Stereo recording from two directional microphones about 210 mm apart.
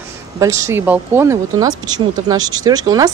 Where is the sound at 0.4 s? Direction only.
15° right (ahead or behind).